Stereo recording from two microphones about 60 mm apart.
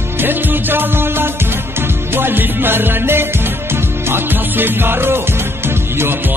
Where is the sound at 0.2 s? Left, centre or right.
Right.